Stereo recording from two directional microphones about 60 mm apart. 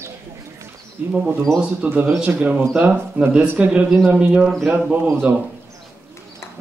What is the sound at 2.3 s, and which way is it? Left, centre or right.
Speech, right.